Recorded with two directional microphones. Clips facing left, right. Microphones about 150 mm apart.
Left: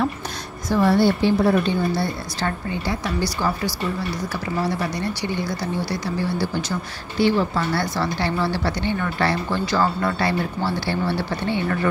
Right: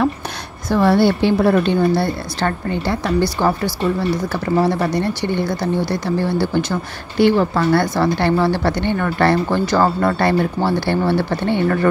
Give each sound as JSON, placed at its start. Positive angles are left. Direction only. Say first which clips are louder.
{"t": 0.7, "sound": "a woman's voice", "louder": "right 3 dB", "side_deg": -70}